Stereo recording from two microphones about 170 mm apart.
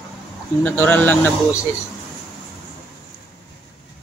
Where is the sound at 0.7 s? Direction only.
10° left (ahead or behind).